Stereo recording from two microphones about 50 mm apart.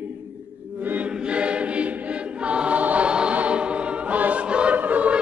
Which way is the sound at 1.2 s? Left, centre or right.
Right.